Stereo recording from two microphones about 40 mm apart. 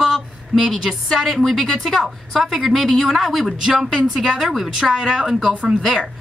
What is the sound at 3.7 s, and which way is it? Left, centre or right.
Speech, centre.